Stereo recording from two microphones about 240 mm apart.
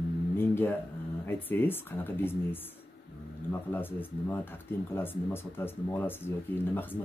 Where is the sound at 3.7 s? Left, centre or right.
Centre.